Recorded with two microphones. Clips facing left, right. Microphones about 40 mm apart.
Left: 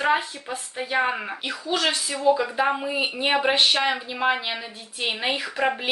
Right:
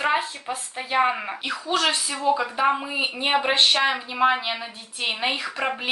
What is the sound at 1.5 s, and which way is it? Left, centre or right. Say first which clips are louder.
Speech: right 2 dB; right.